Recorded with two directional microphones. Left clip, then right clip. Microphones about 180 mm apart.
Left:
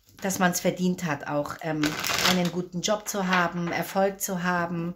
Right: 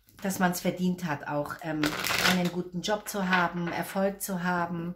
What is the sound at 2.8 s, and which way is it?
Speech, 45° left (ahead or behind).